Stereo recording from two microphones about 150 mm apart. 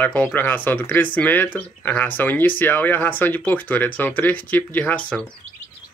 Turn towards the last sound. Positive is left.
turn(degrees=5)  # may be behind; listen again after turning